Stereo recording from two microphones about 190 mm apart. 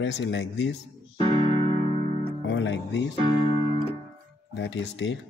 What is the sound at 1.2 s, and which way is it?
Keyboard, 30° right (ahead or behind).